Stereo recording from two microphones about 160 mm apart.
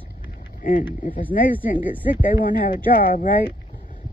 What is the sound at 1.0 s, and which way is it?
Speech, 60° left (ahead or behind).